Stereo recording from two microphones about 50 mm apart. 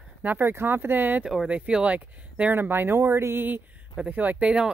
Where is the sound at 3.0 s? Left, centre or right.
Right.